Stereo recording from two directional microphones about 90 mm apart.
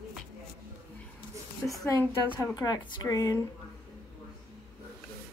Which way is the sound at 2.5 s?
50° left (ahead or behind).